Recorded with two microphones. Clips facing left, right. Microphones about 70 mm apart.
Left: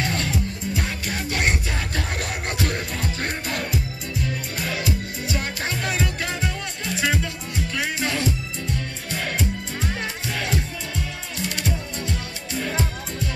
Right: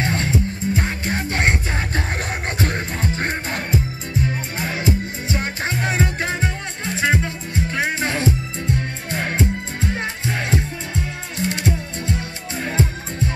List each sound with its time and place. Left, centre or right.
0.0 s music: right